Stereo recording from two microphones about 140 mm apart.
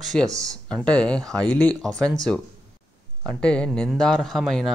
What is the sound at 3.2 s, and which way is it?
Speech, 5° left (ahead or behind).